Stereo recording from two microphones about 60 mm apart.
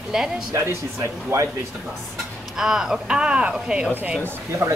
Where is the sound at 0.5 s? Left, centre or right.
Right.